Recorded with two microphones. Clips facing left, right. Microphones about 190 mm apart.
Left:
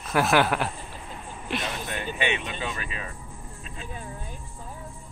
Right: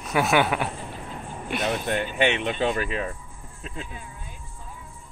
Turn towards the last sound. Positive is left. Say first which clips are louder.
# left 3 dB
turn(degrees=40)  # may be behind; listen again after turning